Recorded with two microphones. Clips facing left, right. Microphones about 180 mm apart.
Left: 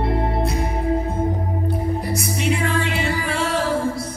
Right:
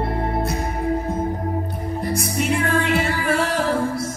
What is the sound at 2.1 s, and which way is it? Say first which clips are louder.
Music: right 1 dB; 55° right (ahead or behind).